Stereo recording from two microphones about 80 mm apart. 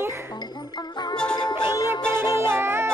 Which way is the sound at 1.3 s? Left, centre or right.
Left.